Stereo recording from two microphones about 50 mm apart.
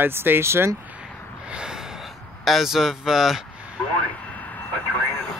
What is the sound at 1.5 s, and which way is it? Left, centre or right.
Gasp, centre.